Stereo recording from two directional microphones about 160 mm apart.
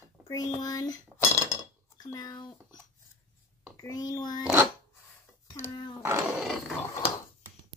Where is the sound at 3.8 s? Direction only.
25° left (ahead or behind).